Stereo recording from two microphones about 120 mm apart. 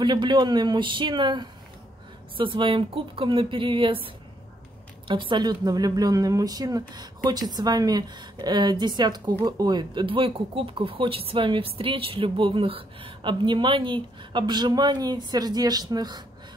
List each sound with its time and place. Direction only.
0.0 s a woman's voice: 40° right (ahead or behind)